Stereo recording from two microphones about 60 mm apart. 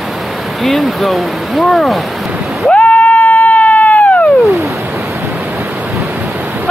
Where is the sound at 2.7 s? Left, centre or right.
Left.